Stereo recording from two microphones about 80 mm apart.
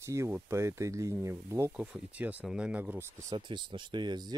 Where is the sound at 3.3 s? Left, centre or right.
Right.